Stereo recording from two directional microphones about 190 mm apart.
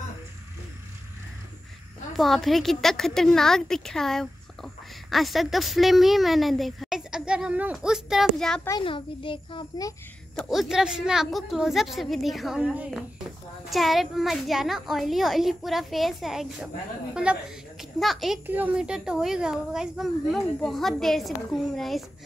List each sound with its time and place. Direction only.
2.1 s speech: centre (ahead or behind)
8.6 s a child's voice: 25° left (ahead or behind)
10.4 s speech: centre (ahead or behind)